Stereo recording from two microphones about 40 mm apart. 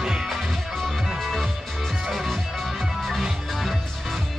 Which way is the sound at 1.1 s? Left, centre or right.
Centre.